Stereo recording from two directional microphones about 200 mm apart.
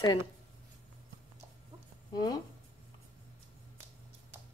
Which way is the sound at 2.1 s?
20° left (ahead or behind).